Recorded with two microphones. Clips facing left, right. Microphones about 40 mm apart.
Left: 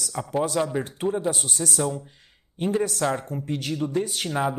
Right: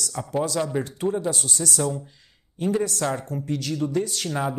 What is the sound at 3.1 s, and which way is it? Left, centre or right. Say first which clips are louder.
Speech: even; left.